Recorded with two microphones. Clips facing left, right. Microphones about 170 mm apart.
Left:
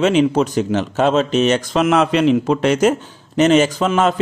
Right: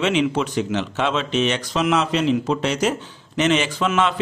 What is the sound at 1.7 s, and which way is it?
A man's voice, 55° left (ahead or behind).